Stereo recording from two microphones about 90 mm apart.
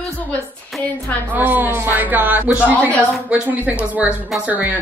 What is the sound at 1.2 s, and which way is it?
Speech, 20° right (ahead or behind).